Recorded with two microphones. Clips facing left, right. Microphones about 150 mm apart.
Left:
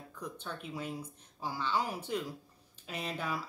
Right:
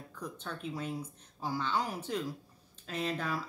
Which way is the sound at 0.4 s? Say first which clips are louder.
Right 3 dB; 10° left (ahead or behind).